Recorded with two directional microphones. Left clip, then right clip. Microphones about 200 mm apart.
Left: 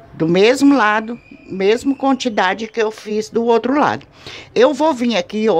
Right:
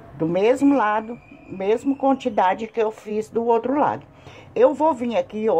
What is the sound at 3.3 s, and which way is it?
Speech, 35° left (ahead or behind).